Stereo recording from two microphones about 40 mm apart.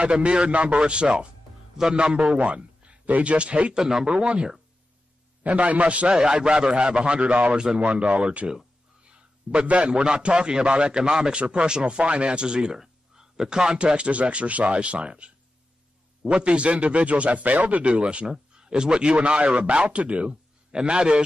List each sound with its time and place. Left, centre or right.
0.0 s a man's voice: right
3.7 s a man's voice: centre
5.4 s a man's voice: right
6.0 s a man's voice: right
7.5 s a man's voice: right
18.0 s a man's voice: right